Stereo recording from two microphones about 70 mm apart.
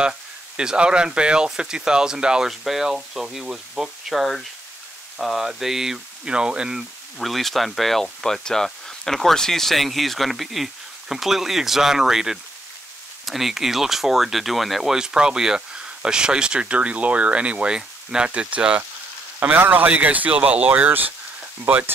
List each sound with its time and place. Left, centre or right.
0.6 s speech: centre